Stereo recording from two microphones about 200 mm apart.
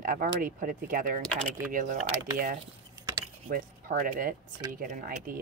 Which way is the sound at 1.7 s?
40° right (ahead or behind).